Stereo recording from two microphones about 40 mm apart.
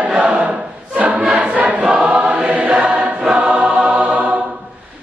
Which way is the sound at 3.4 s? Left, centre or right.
Right.